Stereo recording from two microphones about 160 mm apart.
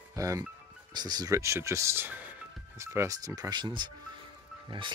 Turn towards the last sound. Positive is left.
turn(degrees=-30)  # may be behind; listen again after turning